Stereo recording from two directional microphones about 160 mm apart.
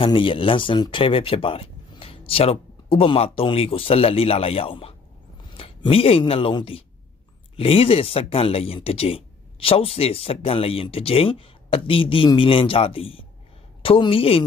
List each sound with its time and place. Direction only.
0.0 s speech: 35° left (ahead or behind)